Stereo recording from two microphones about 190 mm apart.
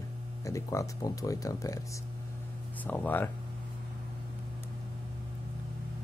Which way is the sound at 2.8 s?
10° left (ahead or behind).